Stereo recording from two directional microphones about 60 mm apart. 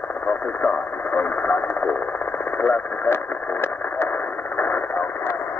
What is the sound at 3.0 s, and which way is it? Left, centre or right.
Radio, left.